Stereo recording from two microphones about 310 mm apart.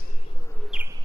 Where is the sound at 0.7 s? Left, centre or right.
Centre.